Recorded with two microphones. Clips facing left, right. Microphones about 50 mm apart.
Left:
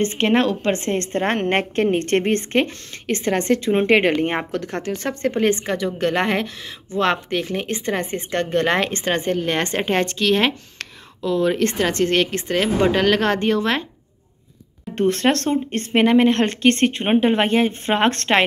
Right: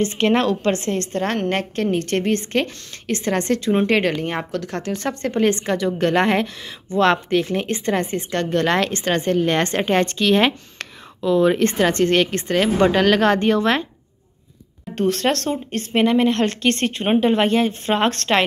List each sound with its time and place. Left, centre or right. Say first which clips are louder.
0.0 s a woman's voice: even; centre
0.8 s a woman's voice: left 1 dB; left; by 13.8 s centre
15.0 s a woman's voice: left 1 dB; left